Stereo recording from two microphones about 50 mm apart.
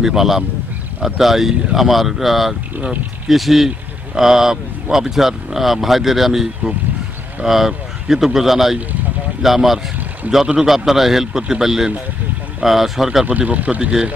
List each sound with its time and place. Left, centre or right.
0.0 s speech: centre
13.3 s speech: right